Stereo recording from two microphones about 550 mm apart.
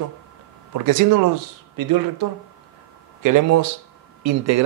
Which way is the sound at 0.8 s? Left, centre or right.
Right.